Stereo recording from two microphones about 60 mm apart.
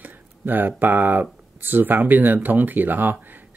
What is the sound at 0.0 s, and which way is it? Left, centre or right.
Speech, right.